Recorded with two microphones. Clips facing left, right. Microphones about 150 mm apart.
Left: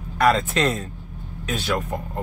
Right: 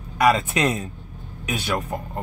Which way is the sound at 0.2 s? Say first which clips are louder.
Even; 10° right (ahead or behind).